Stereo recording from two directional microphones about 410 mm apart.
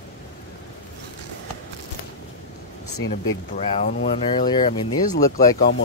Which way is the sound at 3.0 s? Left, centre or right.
Left.